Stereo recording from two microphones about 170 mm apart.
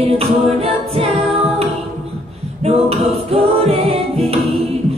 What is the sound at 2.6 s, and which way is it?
Music, 35° right (ahead or behind).